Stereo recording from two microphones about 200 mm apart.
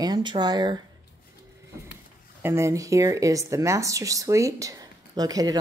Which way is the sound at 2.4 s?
15° right (ahead or behind).